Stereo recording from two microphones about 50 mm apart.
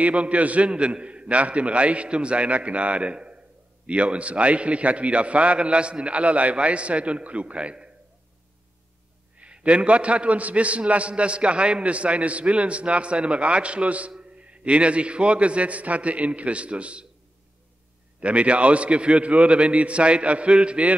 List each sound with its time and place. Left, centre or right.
0.0 s a man's voice: right
9.4 s a man's voice: right
18.2 s a man's voice: right